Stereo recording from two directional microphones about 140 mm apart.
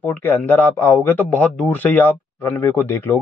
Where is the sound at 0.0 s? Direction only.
15° left (ahead or behind).